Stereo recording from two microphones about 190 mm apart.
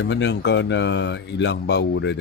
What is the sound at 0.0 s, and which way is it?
Speech, 65° left (ahead or behind).